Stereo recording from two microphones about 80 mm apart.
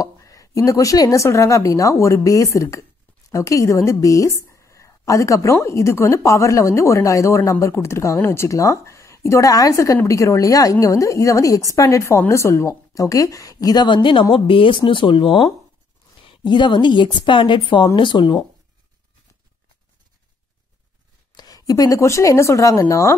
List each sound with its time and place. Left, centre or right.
0.0 s a woman's voice: left
13.8 s a woman's voice: left
16.3 s a woman's voice: left
21.3 s speech: left